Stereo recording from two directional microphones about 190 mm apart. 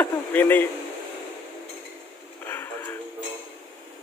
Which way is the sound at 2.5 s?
10° left (ahead or behind).